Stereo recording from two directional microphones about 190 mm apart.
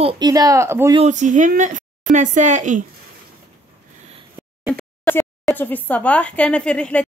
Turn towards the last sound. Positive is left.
turn(degrees=5)  # may be behind; listen again after turning